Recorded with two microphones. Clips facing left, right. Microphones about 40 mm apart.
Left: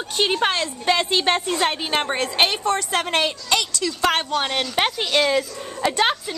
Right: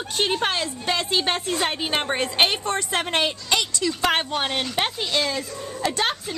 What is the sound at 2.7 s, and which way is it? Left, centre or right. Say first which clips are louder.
Speech: left 3 dB; centre.